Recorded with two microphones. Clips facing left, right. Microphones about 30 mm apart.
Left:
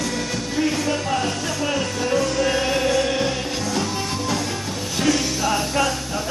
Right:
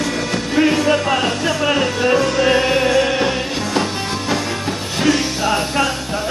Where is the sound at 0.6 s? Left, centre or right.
Right.